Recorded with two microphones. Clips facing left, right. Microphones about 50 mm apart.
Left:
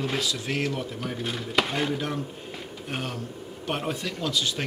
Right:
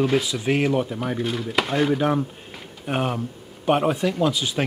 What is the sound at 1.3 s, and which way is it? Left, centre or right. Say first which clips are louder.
Speech: even; centre.